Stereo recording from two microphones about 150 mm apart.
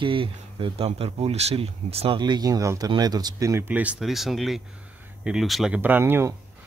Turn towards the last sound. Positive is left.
turn(degrees=-15)  # may be behind; listen again after turning